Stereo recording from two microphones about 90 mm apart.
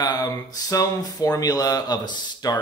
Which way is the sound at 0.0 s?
45° left (ahead or behind).